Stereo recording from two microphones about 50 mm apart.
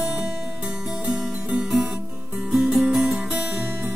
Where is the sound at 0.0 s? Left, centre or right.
Centre.